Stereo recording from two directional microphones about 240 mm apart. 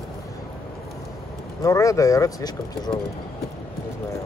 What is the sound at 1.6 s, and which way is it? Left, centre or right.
Speech, centre.